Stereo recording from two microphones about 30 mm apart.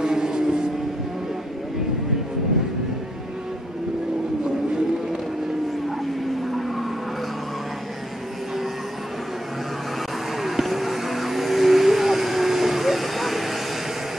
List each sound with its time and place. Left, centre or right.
0.0 s vehicle: right
10.4 s vehicle: centre